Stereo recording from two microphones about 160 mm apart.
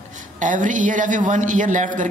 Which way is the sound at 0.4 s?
55° right (ahead or behind).